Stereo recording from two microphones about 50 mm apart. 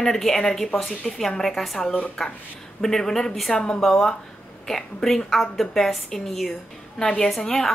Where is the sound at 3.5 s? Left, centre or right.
Centre.